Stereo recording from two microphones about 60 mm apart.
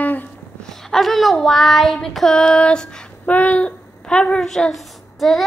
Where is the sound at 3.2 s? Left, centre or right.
Left.